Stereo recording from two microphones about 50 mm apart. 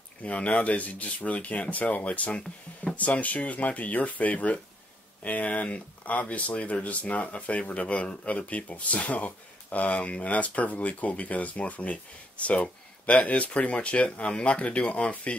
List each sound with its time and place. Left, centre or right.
0.2 s speech: left